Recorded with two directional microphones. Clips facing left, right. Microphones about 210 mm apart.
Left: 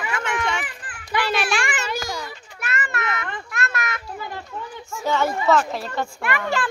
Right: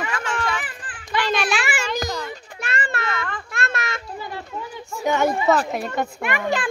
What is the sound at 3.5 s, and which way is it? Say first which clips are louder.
Children playing: even; 25° right (ahead or behind).